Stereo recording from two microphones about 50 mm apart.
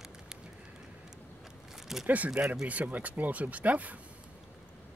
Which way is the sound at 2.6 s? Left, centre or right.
Right.